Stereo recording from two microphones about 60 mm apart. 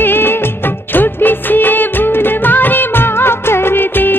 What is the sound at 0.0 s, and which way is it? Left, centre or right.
Music of bollywood, left.